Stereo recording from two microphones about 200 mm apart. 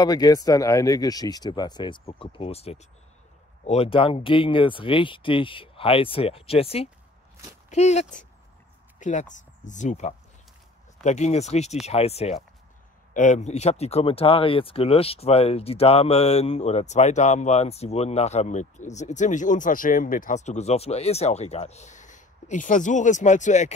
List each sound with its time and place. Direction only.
0.0 s speech: 20° left (ahead or behind); by 23.7 s 35° left (ahead or behind)